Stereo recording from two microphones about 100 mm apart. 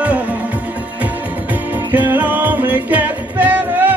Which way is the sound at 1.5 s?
15° right (ahead or behind).